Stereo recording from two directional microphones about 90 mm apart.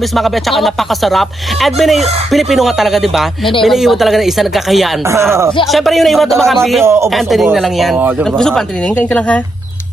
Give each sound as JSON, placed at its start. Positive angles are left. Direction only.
{"t": 0.1, "sound": "speech", "side_deg": 0}
{"t": 6.8, "sound": "speech", "side_deg": -30}
{"t": 7.1, "sound": "speech", "side_deg": 0}